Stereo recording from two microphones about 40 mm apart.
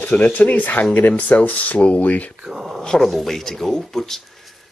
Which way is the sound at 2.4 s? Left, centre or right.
Centre.